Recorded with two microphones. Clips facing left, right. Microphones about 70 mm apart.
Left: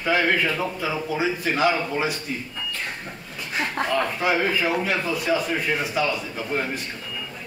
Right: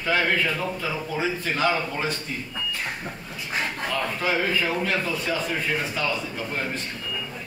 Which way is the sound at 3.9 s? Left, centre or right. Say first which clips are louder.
Left 3 dB; centre.